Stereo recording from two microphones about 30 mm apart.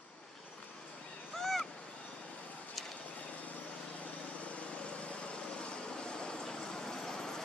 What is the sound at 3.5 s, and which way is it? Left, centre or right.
Vehicle, left.